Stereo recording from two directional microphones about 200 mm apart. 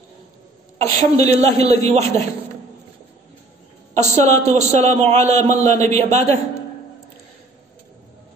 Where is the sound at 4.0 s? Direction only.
35° right (ahead or behind).